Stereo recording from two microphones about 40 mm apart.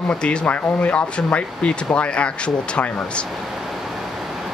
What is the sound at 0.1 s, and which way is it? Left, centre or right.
Speech, left.